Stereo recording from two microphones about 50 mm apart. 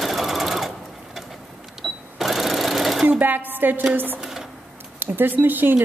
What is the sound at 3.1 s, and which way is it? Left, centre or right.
A woman's voice, right.